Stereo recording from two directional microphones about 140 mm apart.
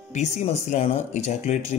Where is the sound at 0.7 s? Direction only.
55° left (ahead or behind).